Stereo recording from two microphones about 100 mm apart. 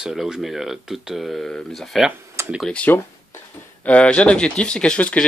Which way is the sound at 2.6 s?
10° left (ahead or behind).